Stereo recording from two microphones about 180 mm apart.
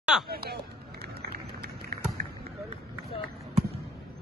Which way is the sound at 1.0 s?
60° right (ahead or behind).